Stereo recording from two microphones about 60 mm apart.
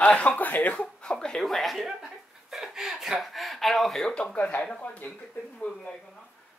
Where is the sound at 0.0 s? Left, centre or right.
Left.